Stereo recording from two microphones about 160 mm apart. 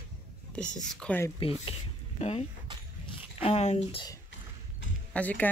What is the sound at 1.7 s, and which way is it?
Speech, 40° left (ahead or behind).